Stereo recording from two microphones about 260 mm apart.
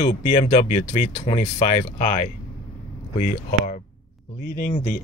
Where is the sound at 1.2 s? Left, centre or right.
Left.